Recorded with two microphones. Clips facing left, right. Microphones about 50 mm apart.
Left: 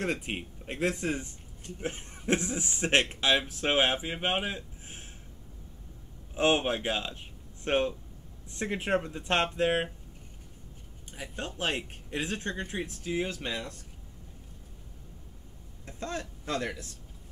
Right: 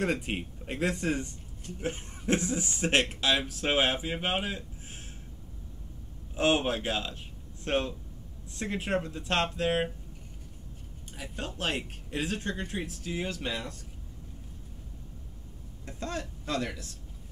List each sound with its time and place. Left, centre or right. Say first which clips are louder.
0.0 s speech: right 2 dB; centre
2.2 s speech: right 1 dB; centre
6.3 s speech: even; centre
11.1 s speech: left 1 dB; centre
15.8 s a sound: even; centre
16.5 s speech: even; left